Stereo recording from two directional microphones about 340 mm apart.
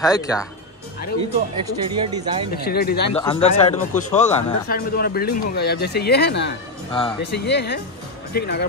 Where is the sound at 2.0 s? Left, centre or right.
Centre.